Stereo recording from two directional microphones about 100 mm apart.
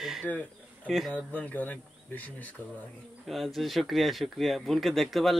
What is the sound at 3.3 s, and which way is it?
Speech, centre (ahead or behind).